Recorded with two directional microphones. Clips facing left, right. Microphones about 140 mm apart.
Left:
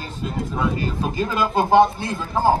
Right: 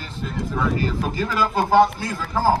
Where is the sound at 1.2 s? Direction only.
25° left (ahead or behind).